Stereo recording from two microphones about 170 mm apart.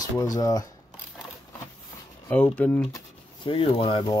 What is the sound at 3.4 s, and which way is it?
Speech, 30° left (ahead or behind).